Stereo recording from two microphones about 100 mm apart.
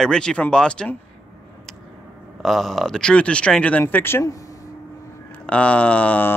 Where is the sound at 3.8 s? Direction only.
20° left (ahead or behind).